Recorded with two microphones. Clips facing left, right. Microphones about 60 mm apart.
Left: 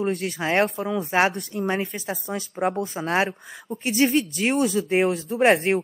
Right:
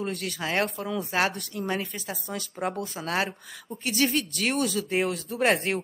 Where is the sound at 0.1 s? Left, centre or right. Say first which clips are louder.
Left 6 dB; centre.